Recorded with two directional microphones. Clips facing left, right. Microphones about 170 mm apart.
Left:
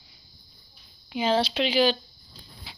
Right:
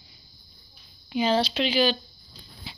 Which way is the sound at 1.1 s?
20° left (ahead or behind).